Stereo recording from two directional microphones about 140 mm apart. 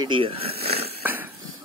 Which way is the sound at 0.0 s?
35° right (ahead or behind).